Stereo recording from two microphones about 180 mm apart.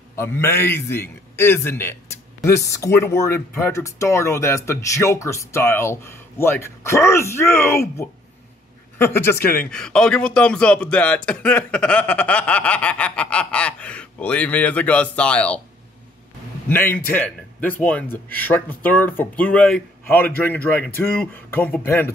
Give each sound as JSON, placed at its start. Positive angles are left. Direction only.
{"t": 0.1, "sound": "speech", "side_deg": 15}
{"t": 16.6, "sound": "speech", "side_deg": 10}